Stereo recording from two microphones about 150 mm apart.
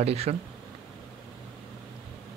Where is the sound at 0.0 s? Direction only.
45° right (ahead or behind).